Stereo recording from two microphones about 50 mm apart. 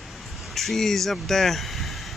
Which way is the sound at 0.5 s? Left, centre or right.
Centre.